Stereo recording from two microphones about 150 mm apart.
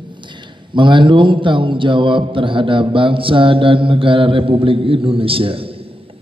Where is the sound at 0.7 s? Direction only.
35° right (ahead or behind).